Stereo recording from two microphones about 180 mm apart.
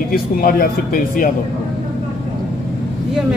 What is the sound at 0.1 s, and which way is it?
Speech, 55° left (ahead or behind).